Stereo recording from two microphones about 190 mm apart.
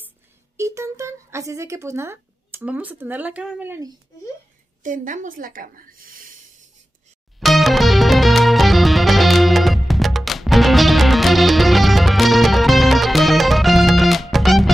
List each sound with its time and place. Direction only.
0.6 s speech: 15° right (ahead or behind)
4.8 s a woman's voice: 45° right (ahead or behind)
7.3 s music: centre (ahead or behind)